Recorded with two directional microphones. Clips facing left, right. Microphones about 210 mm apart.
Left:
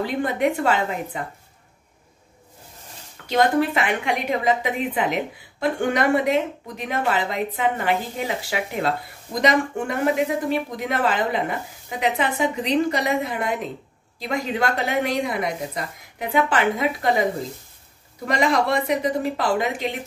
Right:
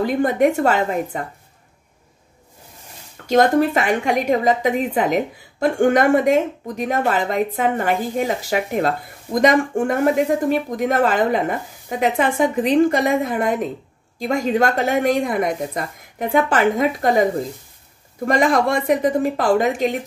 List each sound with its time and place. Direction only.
0.0 s a woman's voice: 45° right (ahead or behind)
3.3 s a woman's voice: 45° right (ahead or behind)